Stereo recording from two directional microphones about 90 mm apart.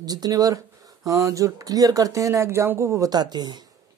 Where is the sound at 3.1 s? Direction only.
50° right (ahead or behind).